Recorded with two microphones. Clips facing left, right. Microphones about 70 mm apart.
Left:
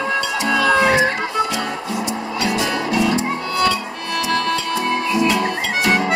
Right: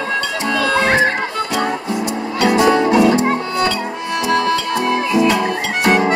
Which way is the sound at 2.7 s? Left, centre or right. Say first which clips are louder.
Right 8 dB; right.